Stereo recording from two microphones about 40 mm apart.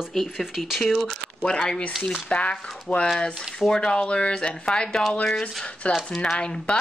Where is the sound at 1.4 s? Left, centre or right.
Left.